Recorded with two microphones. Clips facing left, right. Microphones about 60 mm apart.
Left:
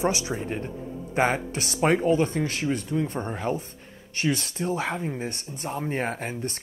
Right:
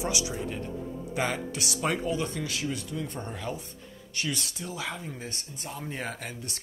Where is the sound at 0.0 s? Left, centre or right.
Left.